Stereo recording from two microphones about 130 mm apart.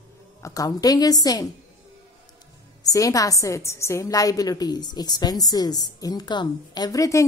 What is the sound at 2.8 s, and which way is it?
A woman's voice, 25° left (ahead or behind).